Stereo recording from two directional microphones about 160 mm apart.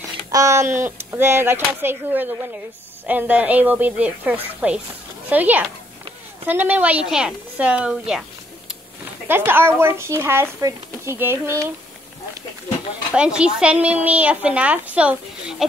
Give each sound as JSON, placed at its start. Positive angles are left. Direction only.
{"t": 0.3, "sound": "speech", "side_deg": -20}
{"t": 9.3, "sound": "speech", "side_deg": -15}
{"t": 13.1, "sound": "speech", "side_deg": -5}